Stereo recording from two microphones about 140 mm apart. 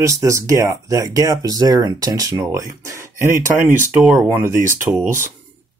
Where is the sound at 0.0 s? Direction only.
20° right (ahead or behind).